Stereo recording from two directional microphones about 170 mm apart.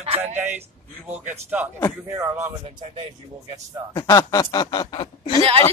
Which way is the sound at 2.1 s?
15° right (ahead or behind).